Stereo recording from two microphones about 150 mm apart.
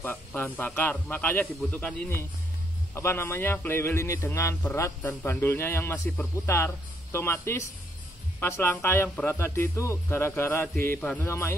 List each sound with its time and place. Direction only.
0.0 s speech: 15° left (ahead or behind)